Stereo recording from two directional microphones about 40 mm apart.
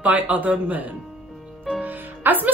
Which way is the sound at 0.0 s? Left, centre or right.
Right.